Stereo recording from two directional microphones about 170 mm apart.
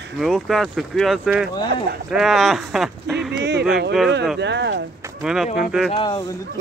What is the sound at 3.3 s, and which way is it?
Speech, 80° right.